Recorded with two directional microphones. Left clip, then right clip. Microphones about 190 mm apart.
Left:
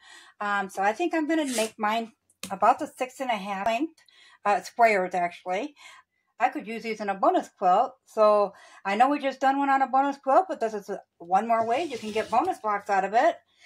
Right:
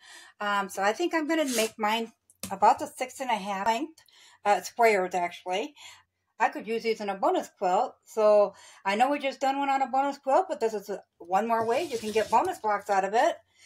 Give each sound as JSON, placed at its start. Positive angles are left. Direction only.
{"t": 0.4, "sound": "speech", "side_deg": 15}